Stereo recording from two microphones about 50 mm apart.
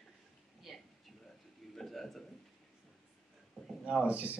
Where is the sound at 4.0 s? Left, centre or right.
Right.